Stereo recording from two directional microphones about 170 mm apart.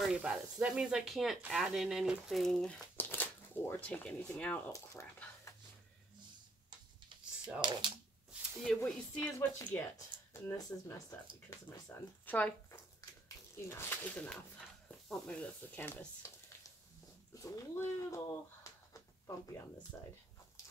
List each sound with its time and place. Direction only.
0.0 s speech: 5° right (ahead or behind)
7.6 s speech: 25° right (ahead or behind)
8.6 s speech: 5° left (ahead or behind)
10.9 s speech: 15° left (ahead or behind)